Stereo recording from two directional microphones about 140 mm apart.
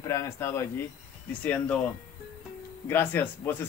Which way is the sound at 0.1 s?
20° left (ahead or behind).